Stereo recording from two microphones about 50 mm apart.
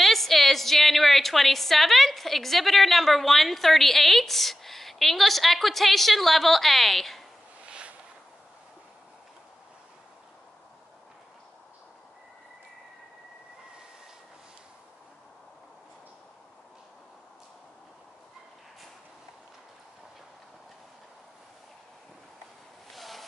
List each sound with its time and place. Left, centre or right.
0.0 s a woman's voice: centre
7.6 s a sound: right
22.8 s waves: centre